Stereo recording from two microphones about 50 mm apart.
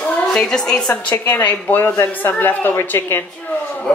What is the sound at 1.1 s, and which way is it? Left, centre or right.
A woman's voice, left.